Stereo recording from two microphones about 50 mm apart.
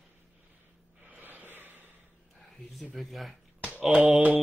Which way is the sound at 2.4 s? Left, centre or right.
Centre.